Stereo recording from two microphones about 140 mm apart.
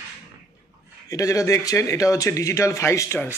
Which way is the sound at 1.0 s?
25° left (ahead or behind).